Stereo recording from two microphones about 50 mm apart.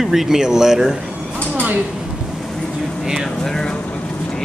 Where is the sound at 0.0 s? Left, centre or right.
Centre.